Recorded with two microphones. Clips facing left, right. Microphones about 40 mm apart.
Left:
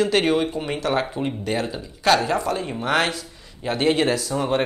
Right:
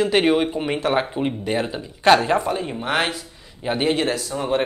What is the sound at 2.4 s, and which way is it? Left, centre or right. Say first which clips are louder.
Speech: even; centre.